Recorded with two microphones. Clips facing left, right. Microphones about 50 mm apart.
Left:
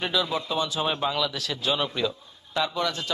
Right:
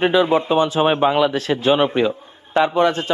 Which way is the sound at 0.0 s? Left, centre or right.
Right.